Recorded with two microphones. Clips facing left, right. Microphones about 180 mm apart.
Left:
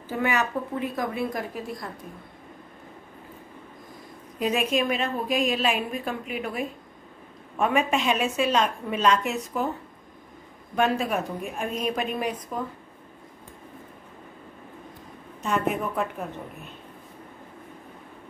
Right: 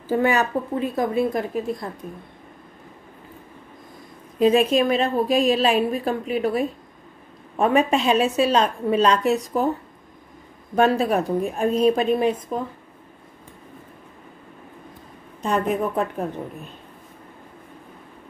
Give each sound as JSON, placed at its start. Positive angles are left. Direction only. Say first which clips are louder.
{"t": 0.1, "sound": "a woman's voice", "louder": "right 6 dB", "side_deg": -35}
{"t": 4.4, "sound": "a woman's voice", "louder": "right 8 dB", "side_deg": -30}
{"t": 10.8, "sound": "a woman's voice", "louder": "right 6 dB", "side_deg": -35}
{"t": 15.4, "sound": "a woman's voice", "louder": "right 4 dB", "side_deg": -35}